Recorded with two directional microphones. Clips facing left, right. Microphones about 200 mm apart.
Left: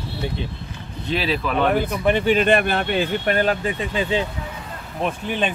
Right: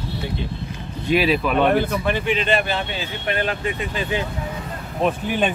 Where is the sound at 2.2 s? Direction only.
45° left (ahead or behind).